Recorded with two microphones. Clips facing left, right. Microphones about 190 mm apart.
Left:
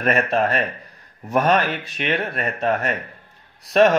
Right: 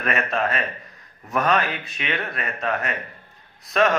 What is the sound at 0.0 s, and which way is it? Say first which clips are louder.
Speech: left 5 dB; 35° left (ahead or behind).